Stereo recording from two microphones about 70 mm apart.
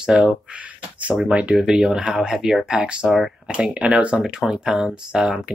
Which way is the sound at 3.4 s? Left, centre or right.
Centre.